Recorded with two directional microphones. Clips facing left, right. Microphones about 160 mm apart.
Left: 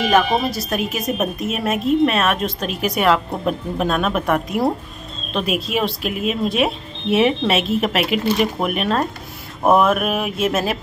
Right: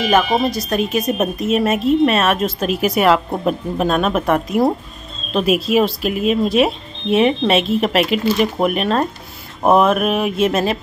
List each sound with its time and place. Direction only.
0.0 s a woman's voice: centre (ahead or behind)